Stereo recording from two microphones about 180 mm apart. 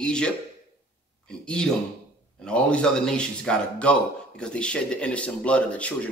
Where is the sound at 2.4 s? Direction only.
5° left (ahead or behind).